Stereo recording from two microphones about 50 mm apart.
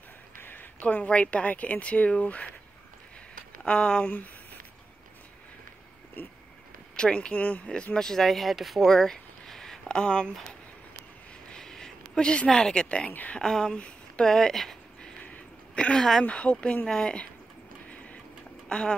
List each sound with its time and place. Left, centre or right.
0.4 s speech: left
3.6 s speech: centre
7.0 s speech: left
7.7 s speech: centre
8.9 s a sound: centre
11.5 s a sound: centre
13.4 s speech: centre
14.3 s speech: centre
15.2 s a sound: left
16.3 s speech: left
18.7 s speech: centre